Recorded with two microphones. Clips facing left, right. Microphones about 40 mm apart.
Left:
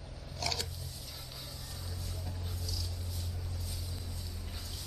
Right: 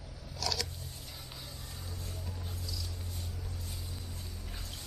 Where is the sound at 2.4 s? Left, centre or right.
Centre.